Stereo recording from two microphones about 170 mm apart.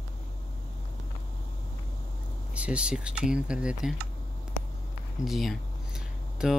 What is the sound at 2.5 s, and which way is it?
Speech, 5° right (ahead or behind).